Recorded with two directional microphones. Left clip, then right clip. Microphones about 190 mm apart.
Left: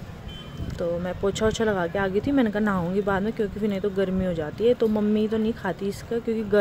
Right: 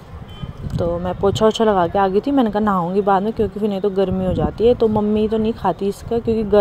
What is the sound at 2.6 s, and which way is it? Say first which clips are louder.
Speech: right 8 dB; centre (ahead or behind).